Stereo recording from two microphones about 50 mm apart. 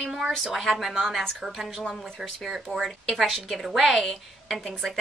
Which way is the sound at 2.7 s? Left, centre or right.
Right.